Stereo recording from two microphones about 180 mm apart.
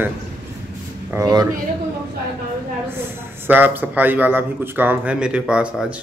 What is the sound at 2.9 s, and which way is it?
Speech, 10° right (ahead or behind).